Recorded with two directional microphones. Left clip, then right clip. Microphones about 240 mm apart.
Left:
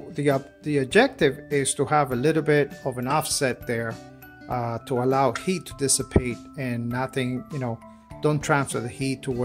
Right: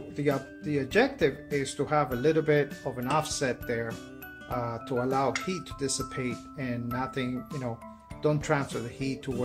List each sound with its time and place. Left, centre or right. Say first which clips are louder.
0.1 s speech: left 6 dB; left